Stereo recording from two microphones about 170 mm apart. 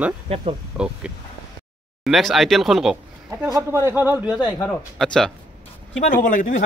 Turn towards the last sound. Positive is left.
turn(degrees=50)  # may be behind; listen again after turning